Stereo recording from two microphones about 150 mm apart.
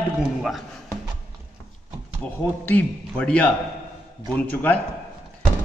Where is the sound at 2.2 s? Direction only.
10° left (ahead or behind).